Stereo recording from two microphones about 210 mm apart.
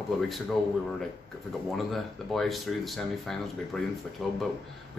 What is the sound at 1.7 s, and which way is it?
Speech, centre (ahead or behind).